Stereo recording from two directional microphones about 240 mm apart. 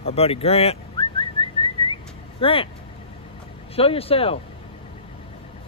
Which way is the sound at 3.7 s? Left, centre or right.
Left.